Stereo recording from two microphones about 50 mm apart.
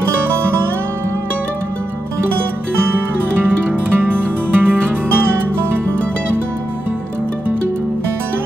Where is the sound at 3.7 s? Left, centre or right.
Right.